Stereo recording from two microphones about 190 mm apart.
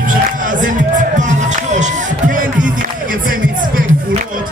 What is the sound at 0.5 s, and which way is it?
Music, 45° right (ahead or behind).